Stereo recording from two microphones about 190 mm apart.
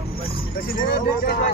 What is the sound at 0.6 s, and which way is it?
Speech, 50° left (ahead or behind).